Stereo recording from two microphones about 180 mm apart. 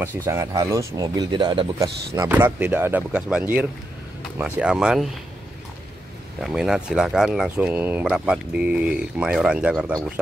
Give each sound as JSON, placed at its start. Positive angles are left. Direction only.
{"t": 0.0, "sound": "speech", "side_deg": -15}
{"t": 1.8, "sound": "speech", "side_deg": -15}
{"t": 6.4, "sound": "speech", "side_deg": 0}